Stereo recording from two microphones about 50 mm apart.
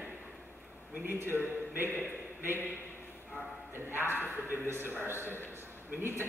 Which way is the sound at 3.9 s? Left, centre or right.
Right.